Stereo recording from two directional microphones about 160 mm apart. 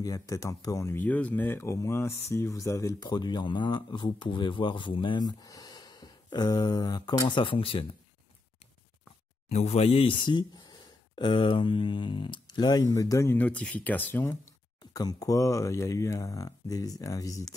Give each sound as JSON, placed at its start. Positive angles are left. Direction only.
{"t": 0.0, "sound": "speech", "side_deg": 20}
{"t": 9.5, "sound": "speech", "side_deg": 45}